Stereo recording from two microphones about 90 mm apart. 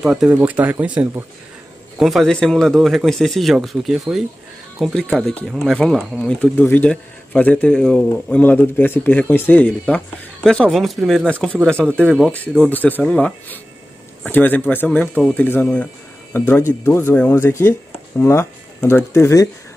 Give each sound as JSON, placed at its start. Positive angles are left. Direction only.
{"t": 0.0, "sound": "speech", "side_deg": -5}
{"t": 0.3, "sound": "speech", "side_deg": -20}
{"t": 2.0, "sound": "a man's voice", "side_deg": 0}
{"t": 11.2, "sound": "a man's voice", "side_deg": 10}
{"t": 12.6, "sound": "a man's voice", "side_deg": 20}
{"t": 16.3, "sound": "speech", "side_deg": 25}